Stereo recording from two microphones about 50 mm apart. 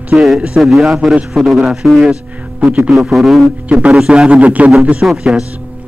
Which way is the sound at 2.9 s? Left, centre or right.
Centre.